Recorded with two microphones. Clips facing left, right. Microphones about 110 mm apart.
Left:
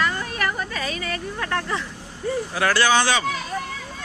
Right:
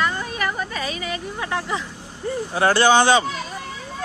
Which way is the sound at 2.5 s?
30° right (ahead or behind).